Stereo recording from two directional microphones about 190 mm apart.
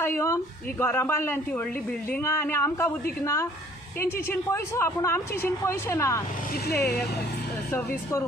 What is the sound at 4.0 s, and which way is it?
A woman's voice, 15° left (ahead or behind).